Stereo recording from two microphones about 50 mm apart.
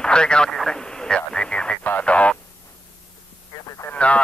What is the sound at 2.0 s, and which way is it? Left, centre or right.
Speech, left.